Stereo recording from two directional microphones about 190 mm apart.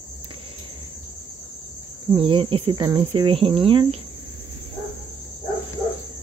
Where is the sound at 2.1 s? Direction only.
30° right (ahead or behind).